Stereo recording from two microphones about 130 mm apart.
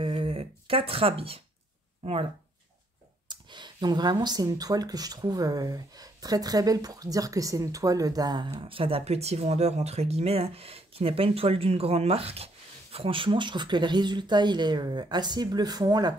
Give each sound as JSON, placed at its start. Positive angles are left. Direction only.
{"t": 0.0, "sound": "a sound", "side_deg": -45}
{"t": 2.0, "sound": "speech", "side_deg": -50}
{"t": 3.3, "sound": "speech", "side_deg": -35}